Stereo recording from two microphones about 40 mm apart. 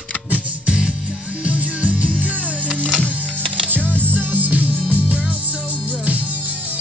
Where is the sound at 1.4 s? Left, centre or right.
Right.